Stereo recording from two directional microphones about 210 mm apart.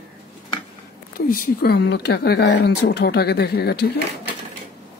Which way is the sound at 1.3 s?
45° left (ahead or behind).